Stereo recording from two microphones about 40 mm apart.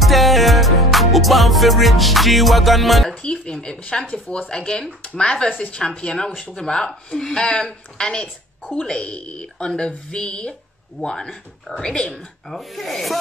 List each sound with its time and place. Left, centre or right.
0.0 s music: centre
3.2 s speech: left
5.8 s speech: left
12.2 s speech: centre